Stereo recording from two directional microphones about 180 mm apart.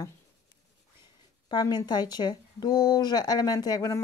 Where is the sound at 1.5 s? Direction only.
25° left (ahead or behind).